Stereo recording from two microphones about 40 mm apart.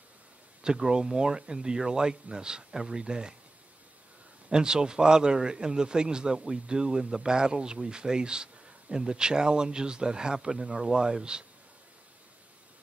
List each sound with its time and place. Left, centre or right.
0.6 s a man's voice: centre
4.5 s a man's voice: centre